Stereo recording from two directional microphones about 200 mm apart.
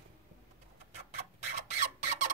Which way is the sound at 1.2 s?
35° right (ahead or behind).